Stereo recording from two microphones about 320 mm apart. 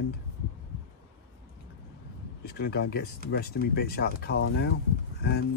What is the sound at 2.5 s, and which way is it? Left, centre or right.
Speech, left.